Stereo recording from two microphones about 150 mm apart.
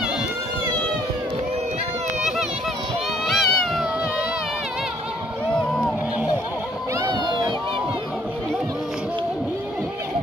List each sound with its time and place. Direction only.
3.3 s cat: centre (ahead or behind)
5.5 s a sound: centre (ahead or behind)
7.0 s run: 30° right (ahead or behind)